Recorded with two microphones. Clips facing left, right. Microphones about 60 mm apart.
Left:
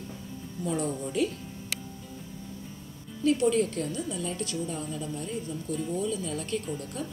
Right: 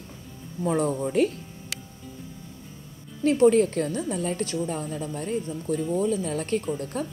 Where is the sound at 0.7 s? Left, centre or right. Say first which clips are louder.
Right 6 dB; right.